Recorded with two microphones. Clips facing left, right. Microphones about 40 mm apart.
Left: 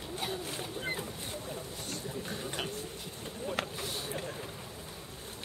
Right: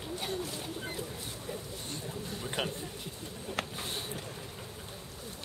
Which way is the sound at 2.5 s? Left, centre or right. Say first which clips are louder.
Right 6 dB; centre.